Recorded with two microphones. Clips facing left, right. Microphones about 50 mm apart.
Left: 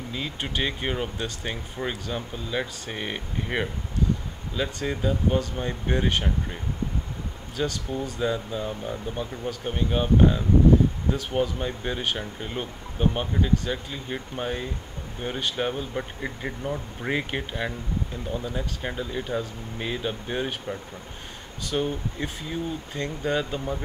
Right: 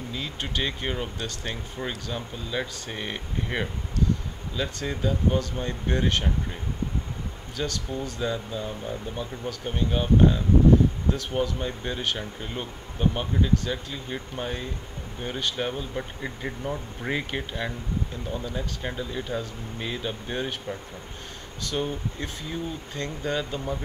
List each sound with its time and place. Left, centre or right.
0.1 s speech: centre